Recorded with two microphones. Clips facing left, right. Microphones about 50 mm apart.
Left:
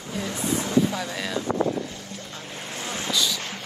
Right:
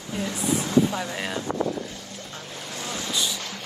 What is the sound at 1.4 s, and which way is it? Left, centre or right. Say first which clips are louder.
Wind: left 2 dB; left.